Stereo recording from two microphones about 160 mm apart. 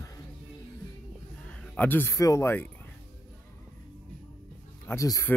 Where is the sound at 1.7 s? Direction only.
10° left (ahead or behind).